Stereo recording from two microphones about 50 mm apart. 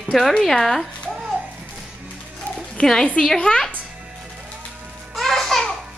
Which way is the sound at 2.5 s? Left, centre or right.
Centre.